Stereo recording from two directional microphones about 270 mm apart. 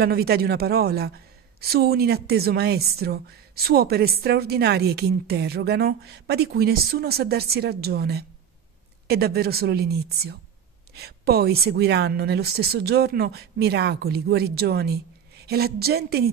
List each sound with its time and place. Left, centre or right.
0.0 s a woman's voice: right